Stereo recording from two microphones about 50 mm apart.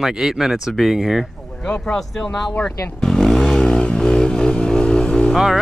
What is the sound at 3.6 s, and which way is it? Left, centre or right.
Vehicle, centre.